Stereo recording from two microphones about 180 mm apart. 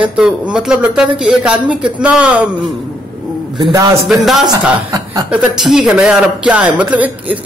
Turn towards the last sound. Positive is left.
turn(degrees=-10)  # may be behind; listen again after turning